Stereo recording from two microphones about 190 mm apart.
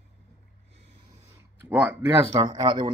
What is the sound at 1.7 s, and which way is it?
Speech, 5° right (ahead or behind).